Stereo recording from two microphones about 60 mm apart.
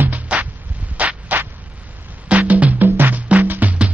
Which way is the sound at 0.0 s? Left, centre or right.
Right.